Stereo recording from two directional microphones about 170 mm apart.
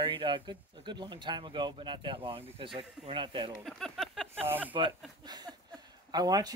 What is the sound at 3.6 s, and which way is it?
Speech, centre (ahead or behind).